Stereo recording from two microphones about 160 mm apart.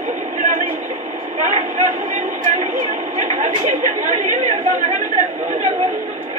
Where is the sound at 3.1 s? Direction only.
45° right (ahead or behind).